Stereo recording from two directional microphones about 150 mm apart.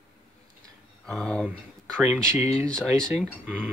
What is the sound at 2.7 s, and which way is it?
Speech, 5° left (ahead or behind).